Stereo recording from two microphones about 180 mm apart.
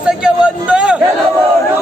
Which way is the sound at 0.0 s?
5° right (ahead or behind).